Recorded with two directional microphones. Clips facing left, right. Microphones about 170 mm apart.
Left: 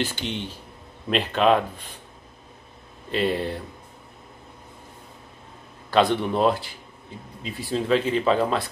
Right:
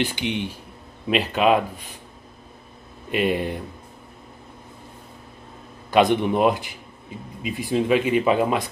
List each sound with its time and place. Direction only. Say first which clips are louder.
0.0 s speech: right 4 dB; 15° right (ahead or behind)
3.1 s speech: right 2 dB; 15° right (ahead or behind)
5.9 s speech: right 3 dB; 15° right (ahead or behind)